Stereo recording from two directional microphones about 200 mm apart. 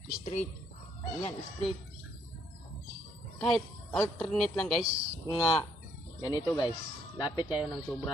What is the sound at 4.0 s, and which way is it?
Speech, 10° left (ahead or behind).